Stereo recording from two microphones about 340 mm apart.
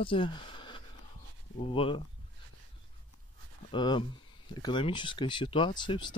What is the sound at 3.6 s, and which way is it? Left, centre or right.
Speech, centre.